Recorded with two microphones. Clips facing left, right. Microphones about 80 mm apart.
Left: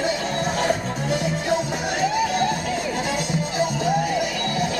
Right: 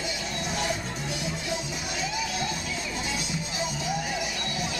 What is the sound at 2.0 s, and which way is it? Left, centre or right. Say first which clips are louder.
Music: left 11 dB; left.